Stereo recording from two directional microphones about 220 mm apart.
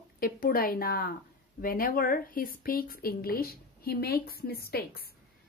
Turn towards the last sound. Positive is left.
turn(degrees=45)  # may be behind; listen again after turning